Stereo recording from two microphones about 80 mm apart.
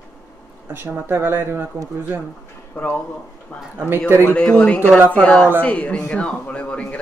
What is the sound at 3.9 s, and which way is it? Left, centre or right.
Speech, right.